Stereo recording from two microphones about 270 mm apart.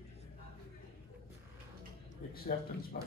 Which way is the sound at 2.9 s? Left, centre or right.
Left.